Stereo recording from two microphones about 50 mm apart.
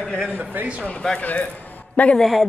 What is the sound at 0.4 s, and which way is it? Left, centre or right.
Speech, right.